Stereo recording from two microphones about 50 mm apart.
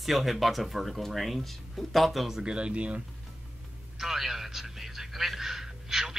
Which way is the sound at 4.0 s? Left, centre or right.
Centre.